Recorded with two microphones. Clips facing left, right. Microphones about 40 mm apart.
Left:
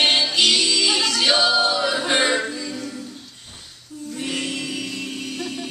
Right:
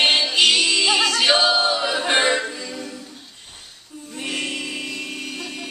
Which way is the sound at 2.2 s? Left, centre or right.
Centre.